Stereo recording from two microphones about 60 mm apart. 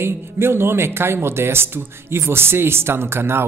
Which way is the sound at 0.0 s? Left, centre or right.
Right.